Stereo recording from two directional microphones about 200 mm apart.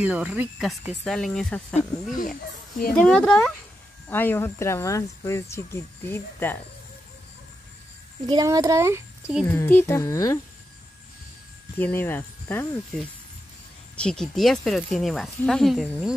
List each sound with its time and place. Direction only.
0.0 s speech: 5° right (ahead or behind)
2.9 s speech: 5° left (ahead or behind)
8.3 s speech: 20° right (ahead or behind)
9.4 s speech: 10° left (ahead or behind)
11.8 s speech: 10° left (ahead or behind)